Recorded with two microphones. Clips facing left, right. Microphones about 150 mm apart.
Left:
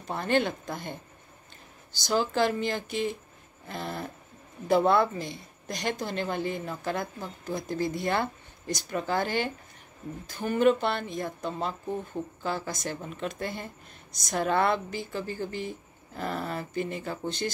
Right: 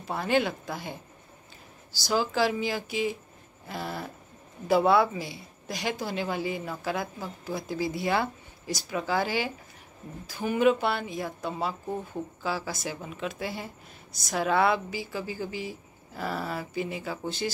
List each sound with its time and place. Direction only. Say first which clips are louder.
0.0 s a woman's voice: even; 5° right (ahead or behind)
2.0 s a woman's voice: even; 5° right (ahead or behind)